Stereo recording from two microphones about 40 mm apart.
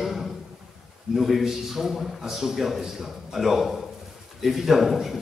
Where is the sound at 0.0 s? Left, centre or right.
Centre.